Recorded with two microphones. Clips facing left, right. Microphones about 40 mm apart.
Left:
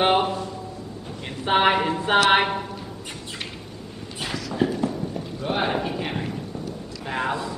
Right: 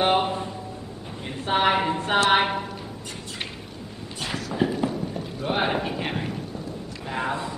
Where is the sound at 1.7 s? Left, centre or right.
Centre.